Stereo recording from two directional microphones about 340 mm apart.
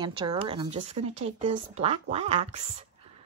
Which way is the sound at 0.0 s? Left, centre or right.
Centre.